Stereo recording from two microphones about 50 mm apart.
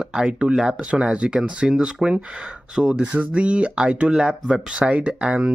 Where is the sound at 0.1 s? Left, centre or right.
Centre.